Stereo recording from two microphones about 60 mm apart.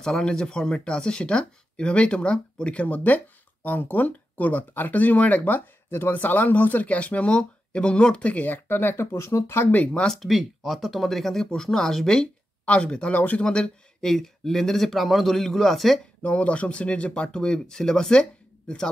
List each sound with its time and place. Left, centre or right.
0.0 s speech: centre
5.9 s speech: left
8.6 s speech: left
9.7 s speech: left
10.0 s speech: centre
10.3 s speech: centre
12.6 s speech: centre
13.4 s speech: centre
16.2 s speech: left